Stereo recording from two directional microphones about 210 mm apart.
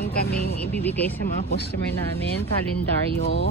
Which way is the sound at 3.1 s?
50° left (ahead or behind).